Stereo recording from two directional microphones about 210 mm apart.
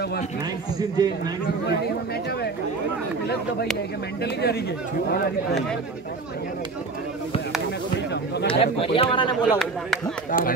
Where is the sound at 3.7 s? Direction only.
50° left (ahead or behind).